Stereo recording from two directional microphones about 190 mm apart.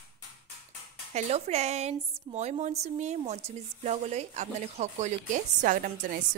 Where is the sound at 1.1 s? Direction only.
35° right (ahead or behind).